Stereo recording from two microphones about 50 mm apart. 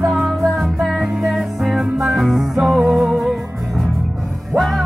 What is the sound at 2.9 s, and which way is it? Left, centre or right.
Music, centre.